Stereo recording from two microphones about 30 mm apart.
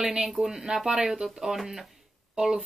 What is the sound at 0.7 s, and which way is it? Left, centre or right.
Speech, centre.